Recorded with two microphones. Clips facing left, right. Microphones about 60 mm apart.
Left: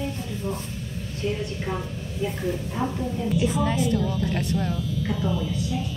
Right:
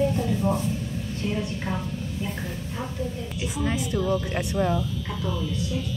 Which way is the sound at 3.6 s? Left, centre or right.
Centre.